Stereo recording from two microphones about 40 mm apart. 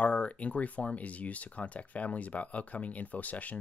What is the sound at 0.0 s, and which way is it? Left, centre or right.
Speech, left.